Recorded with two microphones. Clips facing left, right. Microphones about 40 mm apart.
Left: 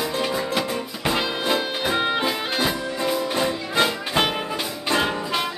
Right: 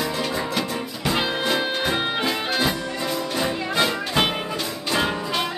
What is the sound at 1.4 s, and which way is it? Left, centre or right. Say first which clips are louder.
Music: even; centre.